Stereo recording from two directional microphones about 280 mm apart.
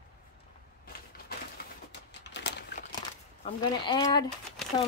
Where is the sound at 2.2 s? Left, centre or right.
Left.